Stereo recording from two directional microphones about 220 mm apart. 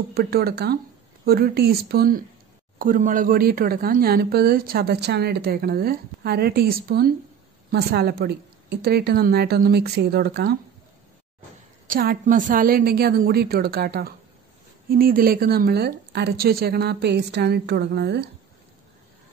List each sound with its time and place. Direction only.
0.1 s a woman's voice: 45° right (ahead or behind)
11.9 s a woman's voice: 40° right (ahead or behind)